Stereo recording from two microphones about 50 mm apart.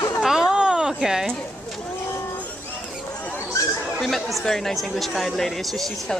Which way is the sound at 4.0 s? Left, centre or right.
Centre.